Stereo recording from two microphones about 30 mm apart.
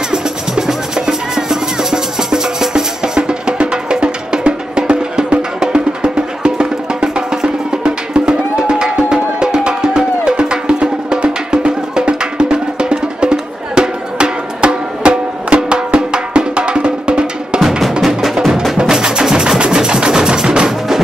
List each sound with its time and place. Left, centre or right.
0.1 s music: centre
17.6 s drum: centre
18.8 s music: right